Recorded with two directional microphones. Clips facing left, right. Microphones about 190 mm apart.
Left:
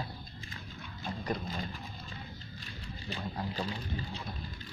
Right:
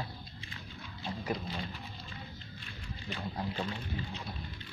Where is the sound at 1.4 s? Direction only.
45° left (ahead or behind).